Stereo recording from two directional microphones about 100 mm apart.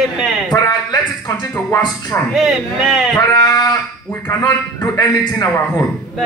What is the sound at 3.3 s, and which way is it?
Speech, 35° left (ahead or behind).